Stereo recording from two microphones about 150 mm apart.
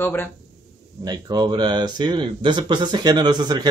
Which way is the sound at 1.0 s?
25° right (ahead or behind).